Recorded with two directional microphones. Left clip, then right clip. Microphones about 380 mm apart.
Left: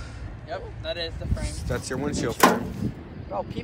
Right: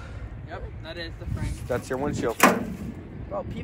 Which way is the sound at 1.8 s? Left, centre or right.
Centre.